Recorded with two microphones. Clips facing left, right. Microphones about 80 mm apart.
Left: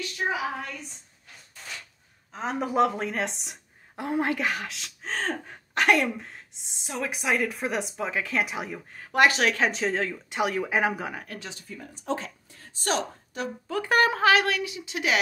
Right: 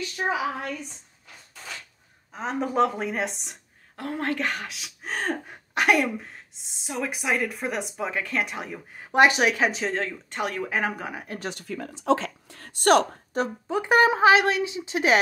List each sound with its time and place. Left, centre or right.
2.3 s speech: centre
3.9 s speech: centre
8.9 s speech: centre
11.3 s speech: right
11.6 s speech: right
13.3 s speech: right
13.7 s a woman's voice: centre